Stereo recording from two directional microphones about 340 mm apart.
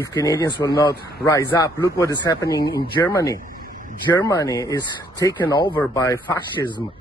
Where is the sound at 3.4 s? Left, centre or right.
Right.